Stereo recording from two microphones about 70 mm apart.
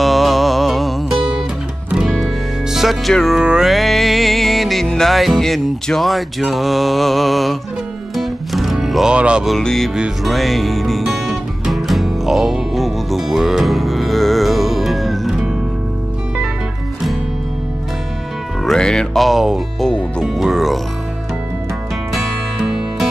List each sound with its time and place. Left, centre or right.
0.0 s music: centre
2.7 s music: centre
9.1 s music: centre
9.6 s speech: centre
10.2 s music: centre
18.6 s speech: centre
19.2 s music: centre
19.8 s speech: centre
20.3 s music: centre
22.1 s music: centre